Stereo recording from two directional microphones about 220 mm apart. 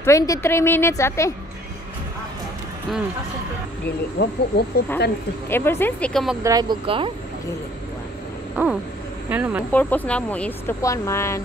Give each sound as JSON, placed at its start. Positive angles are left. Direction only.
{"t": 0.0, "sound": "speech", "side_deg": 15}
{"t": 4.2, "sound": "speech", "side_deg": 50}
{"t": 5.5, "sound": "speech", "side_deg": 10}
{"t": 6.4, "sound": "speech", "side_deg": -15}
{"t": 8.6, "sound": "speech", "side_deg": -10}
{"t": 9.7, "sound": "speech", "side_deg": 5}